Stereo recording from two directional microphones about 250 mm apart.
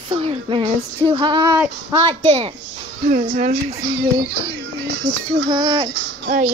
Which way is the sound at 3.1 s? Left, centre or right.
Right.